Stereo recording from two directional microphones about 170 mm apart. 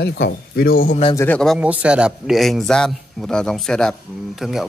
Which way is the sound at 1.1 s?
10° left (ahead or behind).